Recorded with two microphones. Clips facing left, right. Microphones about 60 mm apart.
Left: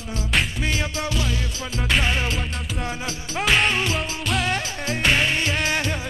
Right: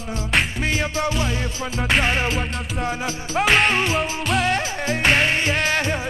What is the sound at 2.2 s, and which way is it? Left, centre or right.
Music, centre.